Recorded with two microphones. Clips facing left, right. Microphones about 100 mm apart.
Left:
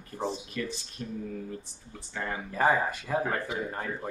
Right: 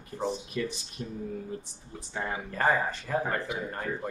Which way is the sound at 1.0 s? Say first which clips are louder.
Right 1 dB; 15° right (ahead or behind).